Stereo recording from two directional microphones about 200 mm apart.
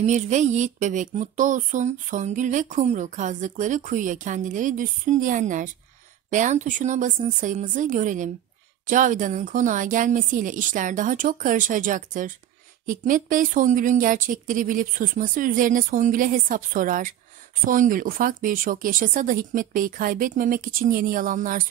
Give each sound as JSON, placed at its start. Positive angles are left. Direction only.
{"t": 0.0, "sound": "speech", "side_deg": -35}